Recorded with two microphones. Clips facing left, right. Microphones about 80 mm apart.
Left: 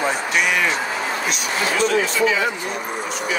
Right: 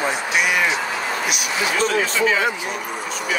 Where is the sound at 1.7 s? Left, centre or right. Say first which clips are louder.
Left 2 dB; right.